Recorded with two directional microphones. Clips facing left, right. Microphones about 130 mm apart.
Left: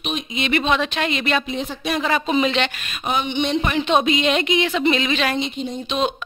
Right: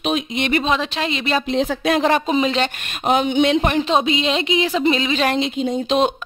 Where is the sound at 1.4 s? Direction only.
85° right.